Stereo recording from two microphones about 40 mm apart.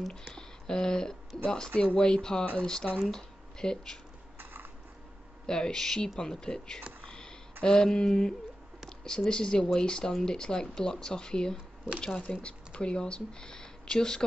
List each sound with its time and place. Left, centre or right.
0.1 s speech: centre
2.6 s a sound: centre
3.1 s speech: centre
5.5 s a sound: centre
9.0 s speech: centre
12.1 s speech: left; by 14.2 s centre